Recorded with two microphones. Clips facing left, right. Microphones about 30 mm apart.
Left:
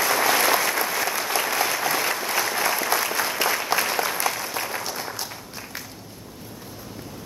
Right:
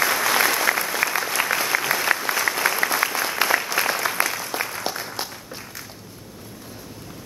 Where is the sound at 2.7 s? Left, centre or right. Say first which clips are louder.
Right 2 dB; right.